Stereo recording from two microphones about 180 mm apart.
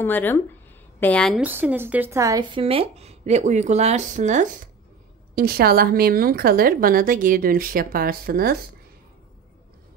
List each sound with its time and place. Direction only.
0.0 s a woman's voice: 10° left (ahead or behind)
1.4 s speech: 10° right (ahead or behind)
2.6 s speech: 35° right (ahead or behind)
5.3 s a woman's voice: 55° right (ahead or behind)